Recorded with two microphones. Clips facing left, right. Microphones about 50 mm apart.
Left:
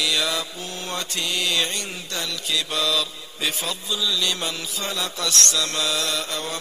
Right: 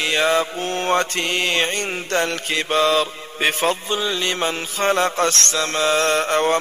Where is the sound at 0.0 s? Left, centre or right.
Right.